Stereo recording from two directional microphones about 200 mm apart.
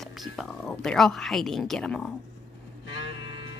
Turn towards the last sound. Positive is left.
turn(degrees=70)  # may be behind; listen again after turning